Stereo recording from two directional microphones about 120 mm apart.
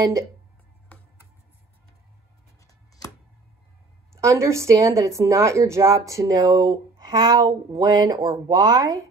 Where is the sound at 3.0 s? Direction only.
30° left (ahead or behind).